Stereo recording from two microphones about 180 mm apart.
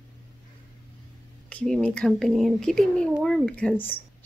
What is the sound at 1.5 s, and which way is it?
Speech, 5° left (ahead or behind).